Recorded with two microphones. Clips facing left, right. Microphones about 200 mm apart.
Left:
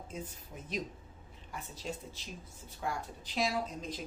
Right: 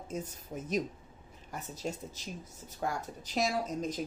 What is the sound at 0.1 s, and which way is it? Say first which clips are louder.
Speech: right 7 dB; 45° right (ahead or behind).